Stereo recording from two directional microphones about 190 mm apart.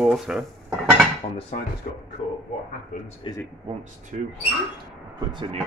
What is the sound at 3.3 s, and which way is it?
Speech, 25° left (ahead or behind).